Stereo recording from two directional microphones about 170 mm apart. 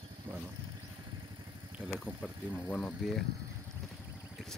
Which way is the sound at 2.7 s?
5° left (ahead or behind).